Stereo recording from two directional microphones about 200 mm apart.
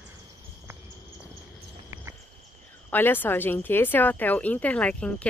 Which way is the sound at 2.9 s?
10° left (ahead or behind).